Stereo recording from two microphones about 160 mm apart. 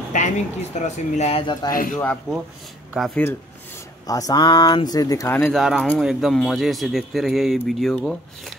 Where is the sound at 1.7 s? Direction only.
60° left (ahead or behind).